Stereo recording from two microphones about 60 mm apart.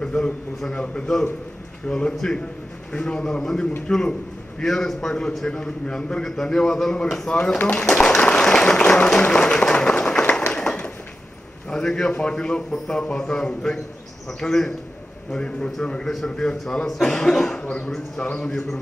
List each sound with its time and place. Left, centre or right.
0.0 s a man's voice: centre
8.3 s applause: centre
9.2 s a sound: centre
11.7 s a man's voice: centre
17.6 s speech: centre
18.4 s a man's voice: centre